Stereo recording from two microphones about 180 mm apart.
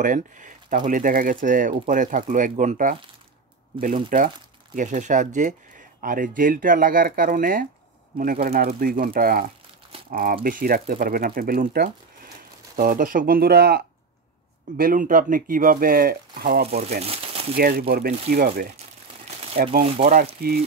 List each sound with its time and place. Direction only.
0.0 s speech: 45° right (ahead or behind); by 13.8 s 60° right (ahead or behind)
14.8 s speech: 50° right (ahead or behind)
17.0 s crumpling: 35° right (ahead or behind)
17.6 s speech: 55° right (ahead or behind)
19.9 s speech: 35° right (ahead or behind)
20.4 s speech: 60° right (ahead or behind)